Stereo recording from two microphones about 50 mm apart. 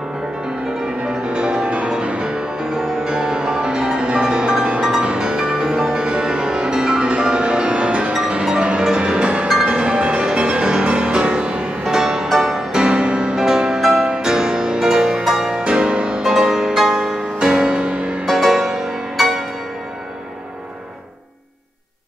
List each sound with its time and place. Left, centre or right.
1.0 s music: centre
15.6 s music: centre
18.2 s music: centre